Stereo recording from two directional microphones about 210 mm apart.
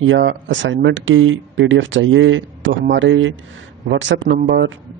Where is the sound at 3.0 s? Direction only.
65° right (ahead or behind).